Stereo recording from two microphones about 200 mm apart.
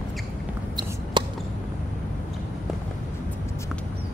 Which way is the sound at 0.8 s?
20° right (ahead or behind).